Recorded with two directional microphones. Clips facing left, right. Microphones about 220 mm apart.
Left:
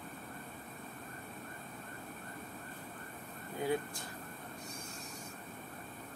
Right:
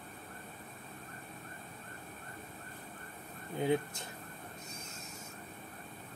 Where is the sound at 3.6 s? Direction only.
20° right (ahead or behind).